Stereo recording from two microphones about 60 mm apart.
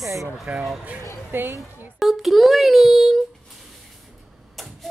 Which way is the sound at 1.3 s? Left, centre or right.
Right.